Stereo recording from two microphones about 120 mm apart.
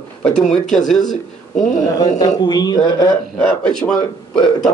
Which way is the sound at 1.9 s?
35° left (ahead or behind).